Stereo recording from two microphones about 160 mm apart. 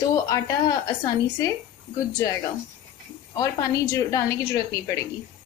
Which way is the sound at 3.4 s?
20° left (ahead or behind).